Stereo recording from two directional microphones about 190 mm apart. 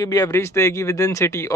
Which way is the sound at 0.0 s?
20° left (ahead or behind).